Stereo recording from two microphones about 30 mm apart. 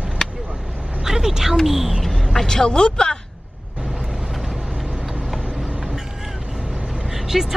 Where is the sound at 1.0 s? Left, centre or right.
Centre.